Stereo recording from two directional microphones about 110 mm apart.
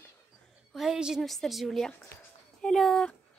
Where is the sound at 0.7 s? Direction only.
5° right (ahead or behind).